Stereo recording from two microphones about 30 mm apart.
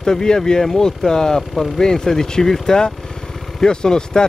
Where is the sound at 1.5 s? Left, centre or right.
Centre.